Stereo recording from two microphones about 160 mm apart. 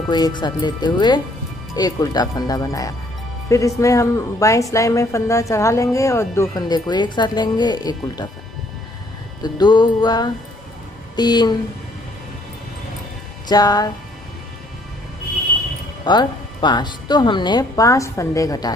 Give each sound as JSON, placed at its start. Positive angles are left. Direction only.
{"t": 0.1, "sound": "a woman's voice", "side_deg": 25}
{"t": 9.4, "sound": "a woman's voice", "side_deg": 25}
{"t": 13.5, "sound": "a woman's voice", "side_deg": 25}
{"t": 16.0, "sound": "a woman's voice", "side_deg": 30}